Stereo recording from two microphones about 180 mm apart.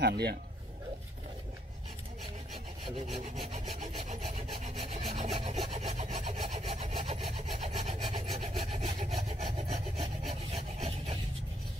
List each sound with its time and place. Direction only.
0.0 s a man's voice: 65° right (ahead or behind)
3.0 s rub: 35° right (ahead or behind)